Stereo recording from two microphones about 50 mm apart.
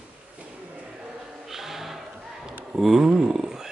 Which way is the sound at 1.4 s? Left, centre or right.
Centre.